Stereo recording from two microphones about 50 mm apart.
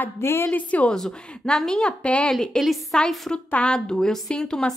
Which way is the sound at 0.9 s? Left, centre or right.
Centre.